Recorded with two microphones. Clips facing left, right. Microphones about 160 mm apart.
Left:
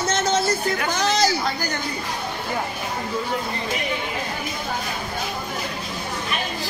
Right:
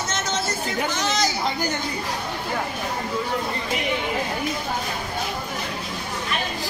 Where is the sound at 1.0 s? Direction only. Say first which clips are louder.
Left 6 dB; 35° left (ahead or behind).